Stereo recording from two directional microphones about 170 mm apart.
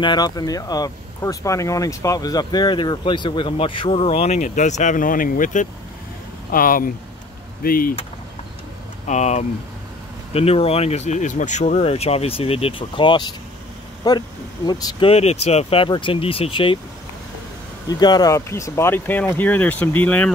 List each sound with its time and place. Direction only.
0.0 s speech: 25° left (ahead or behind); by 7.9 s 55° left (ahead or behind)
9.0 s speech: 40° left (ahead or behind); by 15.0 s 25° left (ahead or behind)
15.0 s speech: 40° left (ahead or behind)
17.8 s speech: 25° left (ahead or behind)